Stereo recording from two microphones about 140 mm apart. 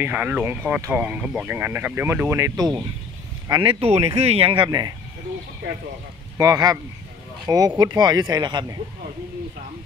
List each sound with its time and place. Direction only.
0.0 s speech: 10° right (ahead or behind); by 3.7 s 30° right (ahead or behind)
3.8 s speech: 50° right (ahead or behind)
4.5 s speech: 30° right (ahead or behind)
6.3 s speech: 25° right (ahead or behind)